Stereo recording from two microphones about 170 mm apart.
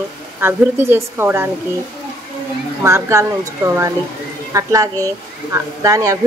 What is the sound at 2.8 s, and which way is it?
Speech, 15° right (ahead or behind).